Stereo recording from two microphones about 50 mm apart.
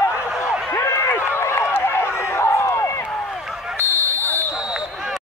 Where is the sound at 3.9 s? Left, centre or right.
Left.